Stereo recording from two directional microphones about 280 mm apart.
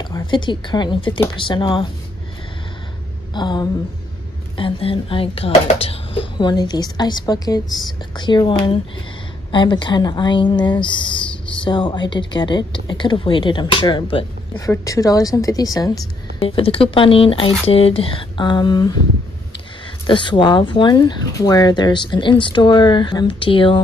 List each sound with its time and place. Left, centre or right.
0.0 s speech: centre
3.3 s speech: centre
20.1 s speech: centre